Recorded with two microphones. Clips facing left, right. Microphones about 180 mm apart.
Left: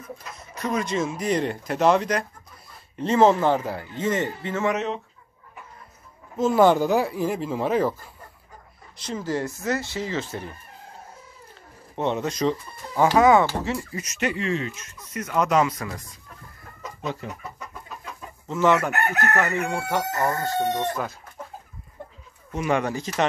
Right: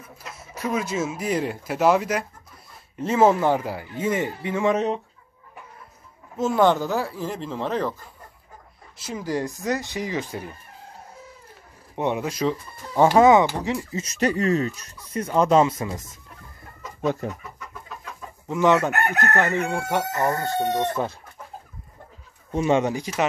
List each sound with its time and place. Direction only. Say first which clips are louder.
0.0 s speech: left 3 dB; 5° right (ahead or behind)
4.6 s speech: right 4 dB; 30° right (ahead or behind)
6.3 s speech: left 2 dB; centre (ahead or behind)
8.9 s speech: even; 10° right (ahead or behind)
11.9 s speech: even; 10° right (ahead or behind)
13.1 s speech: right 1 dB; 20° right (ahead or behind)
14.0 s speech: right 5 dB; 35° right (ahead or behind)
17.0 s chicken: right 7 dB; 50° right (ahead or behind)
18.5 s speech: right 1 dB; 15° right (ahead or behind)
19.9 s speech: right 1 dB; 20° right (ahead or behind)
22.5 s speech: right 3 dB; 25° right (ahead or behind)